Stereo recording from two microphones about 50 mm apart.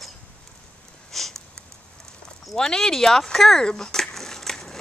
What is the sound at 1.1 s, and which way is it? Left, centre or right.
Sniff, centre.